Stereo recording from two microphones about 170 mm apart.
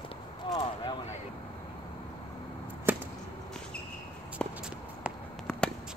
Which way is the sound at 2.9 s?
10° right (ahead or behind).